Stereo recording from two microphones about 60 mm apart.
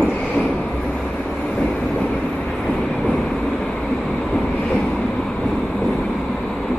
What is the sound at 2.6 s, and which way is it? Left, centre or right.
Vehicle, centre.